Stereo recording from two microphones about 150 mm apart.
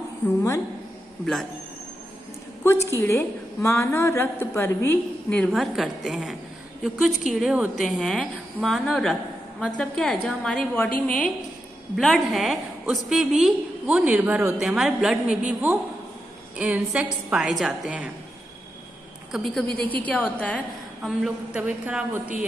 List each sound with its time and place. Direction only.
2.6 s a woman's voice: 20° left (ahead or behind)
5.5 s a woman's voice: centre (ahead or behind)
19.3 s a woman's voice: centre (ahead or behind)
21.0 s a woman's voice: 5° right (ahead or behind)